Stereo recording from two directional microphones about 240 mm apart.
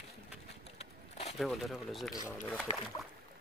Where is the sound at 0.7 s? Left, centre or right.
Left.